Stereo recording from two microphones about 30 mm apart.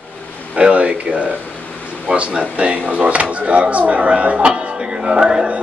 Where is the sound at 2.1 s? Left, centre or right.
Right.